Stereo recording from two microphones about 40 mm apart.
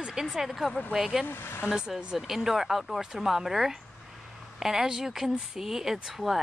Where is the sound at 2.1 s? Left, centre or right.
Centre.